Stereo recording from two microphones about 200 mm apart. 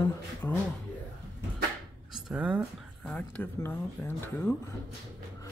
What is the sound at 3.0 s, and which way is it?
Speech, 5° left (ahead or behind).